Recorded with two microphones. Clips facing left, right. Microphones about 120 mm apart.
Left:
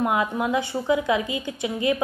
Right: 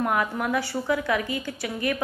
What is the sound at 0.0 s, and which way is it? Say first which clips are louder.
Speech: left 2 dB; 20° left (ahead or behind).